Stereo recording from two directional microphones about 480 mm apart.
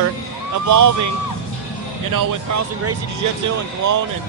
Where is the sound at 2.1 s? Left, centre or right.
Right.